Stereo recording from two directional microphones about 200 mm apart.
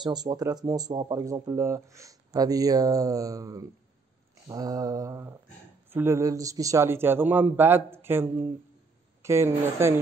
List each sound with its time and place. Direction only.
0.0 s speech: 20° right (ahead or behind)